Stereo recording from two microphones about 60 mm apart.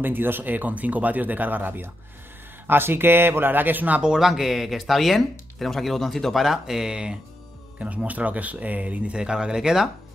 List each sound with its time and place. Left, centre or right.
0.0 s speech: right
4.0 s speech: centre